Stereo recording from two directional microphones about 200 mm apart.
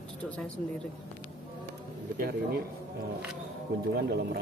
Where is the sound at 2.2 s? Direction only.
50° right (ahead or behind).